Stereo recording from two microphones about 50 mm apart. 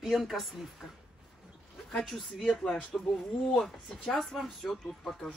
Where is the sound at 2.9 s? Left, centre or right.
Left.